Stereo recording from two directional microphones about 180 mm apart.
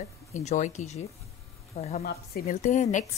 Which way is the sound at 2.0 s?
60° left (ahead or behind).